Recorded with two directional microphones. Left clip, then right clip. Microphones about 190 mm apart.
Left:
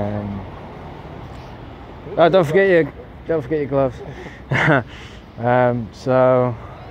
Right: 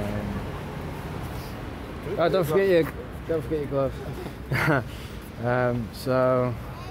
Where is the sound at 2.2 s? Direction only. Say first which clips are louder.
Left 9 dB; 25° left (ahead or behind).